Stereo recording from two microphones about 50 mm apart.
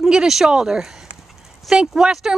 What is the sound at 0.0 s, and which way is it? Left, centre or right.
Speech, centre.